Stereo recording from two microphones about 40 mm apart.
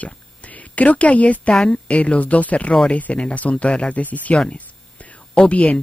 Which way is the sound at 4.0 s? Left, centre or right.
Left.